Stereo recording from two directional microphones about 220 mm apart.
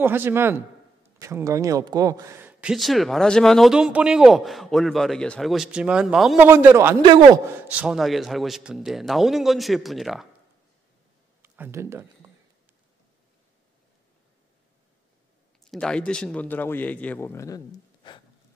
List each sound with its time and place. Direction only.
0.0 s a man's voice: 10° right (ahead or behind)
7.0 s a man's voice: 20° right (ahead or behind)
7.6 s a man's voice: 5° right (ahead or behind)
11.4 s speech: 10° right (ahead or behind)
15.6 s speech: 5° left (ahead or behind)
18.0 s a sound: 20° left (ahead or behind)